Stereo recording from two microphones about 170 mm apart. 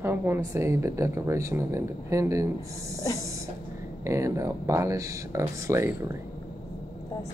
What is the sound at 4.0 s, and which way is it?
Speech, 15° right (ahead or behind).